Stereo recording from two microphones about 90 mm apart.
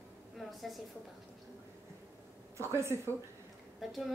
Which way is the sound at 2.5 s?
30° right (ahead or behind).